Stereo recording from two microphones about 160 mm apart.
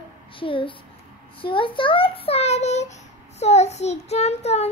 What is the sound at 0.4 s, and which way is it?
A child's voice, 35° left (ahead or behind).